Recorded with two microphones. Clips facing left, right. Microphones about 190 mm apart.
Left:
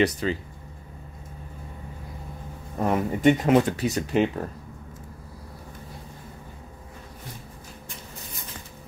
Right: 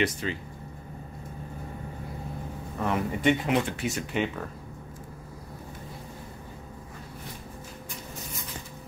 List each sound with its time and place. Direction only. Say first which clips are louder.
0.0 s speech: left 5 dB; 35° left (ahead or behind)
2.8 s speech: left 5 dB; 40° left (ahead or behind)